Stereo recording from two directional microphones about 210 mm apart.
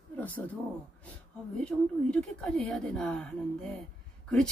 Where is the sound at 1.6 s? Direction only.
5° left (ahead or behind).